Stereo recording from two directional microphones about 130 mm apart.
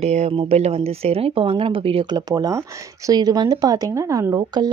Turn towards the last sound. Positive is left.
turn(degrees=-30)  # may be behind; listen again after turning